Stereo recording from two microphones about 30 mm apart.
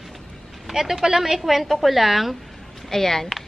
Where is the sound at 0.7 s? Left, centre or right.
Centre.